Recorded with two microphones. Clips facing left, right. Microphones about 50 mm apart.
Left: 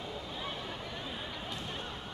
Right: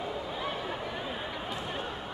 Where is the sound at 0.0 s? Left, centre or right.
Centre.